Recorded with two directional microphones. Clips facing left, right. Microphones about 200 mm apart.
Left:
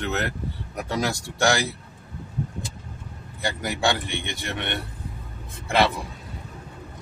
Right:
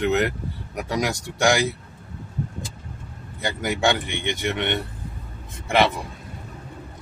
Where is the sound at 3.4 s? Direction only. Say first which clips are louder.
Right 2 dB; 20° right (ahead or behind).